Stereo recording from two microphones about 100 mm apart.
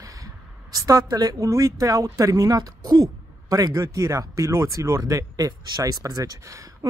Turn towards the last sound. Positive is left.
turn(degrees=-40)  # may be behind; listen again after turning